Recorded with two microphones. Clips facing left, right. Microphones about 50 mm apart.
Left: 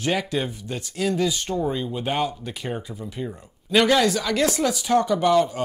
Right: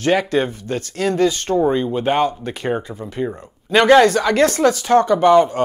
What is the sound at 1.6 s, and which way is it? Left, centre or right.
Speech, right.